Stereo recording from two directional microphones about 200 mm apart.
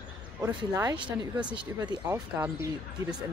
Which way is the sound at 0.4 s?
15° right (ahead or behind).